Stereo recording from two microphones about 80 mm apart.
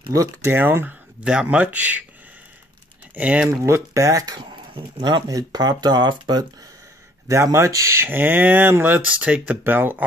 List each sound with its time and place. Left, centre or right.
0.1 s speech: right
0.5 s speech: right
1.2 s speech: centre
3.2 s speech: centre
3.4 s speech: right
4.4 s speech: right
5.3 s speech: right
7.2 s speech: right